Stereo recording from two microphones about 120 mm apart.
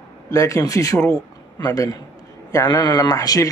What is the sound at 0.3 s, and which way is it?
Speech, 25° left (ahead or behind).